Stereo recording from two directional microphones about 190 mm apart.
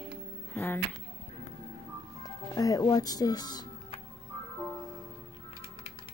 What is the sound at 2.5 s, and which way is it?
Music, 20° left (ahead or behind).